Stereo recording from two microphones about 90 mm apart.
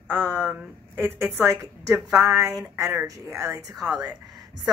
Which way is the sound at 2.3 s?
40° right (ahead or behind).